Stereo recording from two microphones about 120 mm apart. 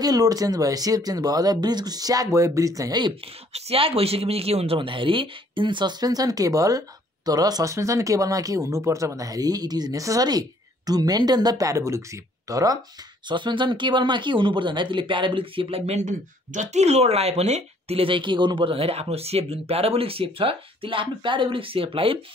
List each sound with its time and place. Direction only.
0.0 s speech: 30° right (ahead or behind)
3.5 s speech: 55° right (ahead or behind); by 12.7 s 30° right (ahead or behind)
13.3 s speech: 40° right (ahead or behind)